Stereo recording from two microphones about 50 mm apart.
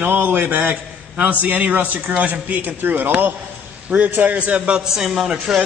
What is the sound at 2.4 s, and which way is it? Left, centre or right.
A man's voice, right.